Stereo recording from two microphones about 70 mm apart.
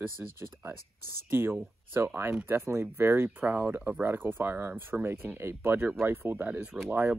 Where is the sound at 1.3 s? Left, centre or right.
Right.